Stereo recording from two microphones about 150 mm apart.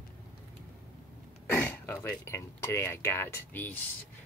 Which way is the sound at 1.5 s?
10° left (ahead or behind).